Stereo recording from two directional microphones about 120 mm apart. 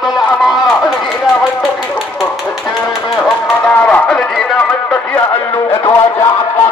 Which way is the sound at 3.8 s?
10° left (ahead or behind).